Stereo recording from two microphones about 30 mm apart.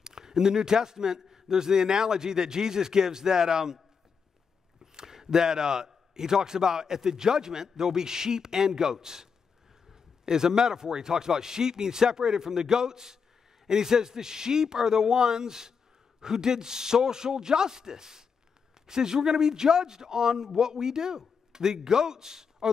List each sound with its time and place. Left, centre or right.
0.0 s a man's voice: right
4.9 s a man's voice: centre